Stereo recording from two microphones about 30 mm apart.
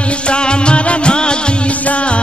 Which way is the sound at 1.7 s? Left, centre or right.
Left.